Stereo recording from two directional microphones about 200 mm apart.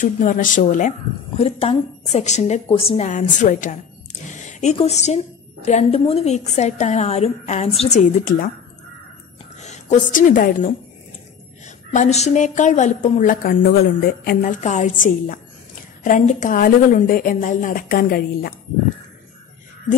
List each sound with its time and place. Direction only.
0.0 s a woman's voice: 40° left (ahead or behind)
3.1 s a woman's voice: 40° left (ahead or behind)
9.6 s a woman's voice: 35° left (ahead or behind); by 14.5 s 50° left (ahead or behind)
14.6 s a woman's voice: 40° left (ahead or behind)